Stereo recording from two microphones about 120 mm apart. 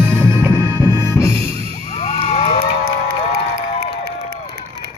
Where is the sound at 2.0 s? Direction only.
60° left (ahead or behind).